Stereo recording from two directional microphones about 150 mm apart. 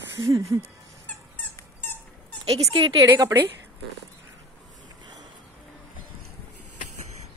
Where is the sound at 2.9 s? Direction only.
20° right (ahead or behind).